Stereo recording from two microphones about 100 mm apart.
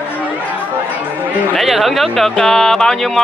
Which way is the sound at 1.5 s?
Centre (ahead or behind).